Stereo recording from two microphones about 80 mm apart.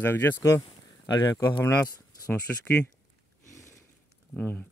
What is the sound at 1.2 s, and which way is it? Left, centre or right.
Speech, left.